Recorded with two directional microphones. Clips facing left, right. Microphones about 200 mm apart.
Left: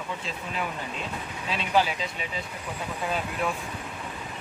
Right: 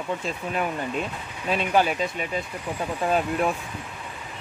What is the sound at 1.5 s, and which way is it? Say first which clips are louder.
Speech: right 3 dB; 50° right (ahead or behind).